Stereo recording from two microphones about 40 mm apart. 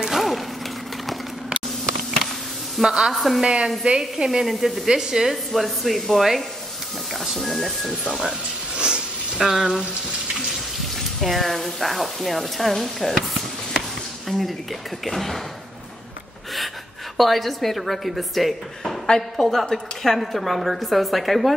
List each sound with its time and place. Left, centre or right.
0.0 s a sound: centre
2.8 s a woman's voice: centre
3.1 s speech: centre
3.4 s a woman's voice: centre
4.8 s a woman's voice: centre
5.3 s speech: centre
8.7 s a sound: right
11.1 s speech: centre
15.0 s speech: centre
17.2 s speech: centre
19.0 s a woman's voice: centre